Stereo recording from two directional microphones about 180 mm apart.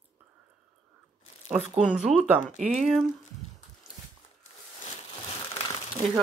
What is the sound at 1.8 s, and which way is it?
Speech, 5° right (ahead or behind).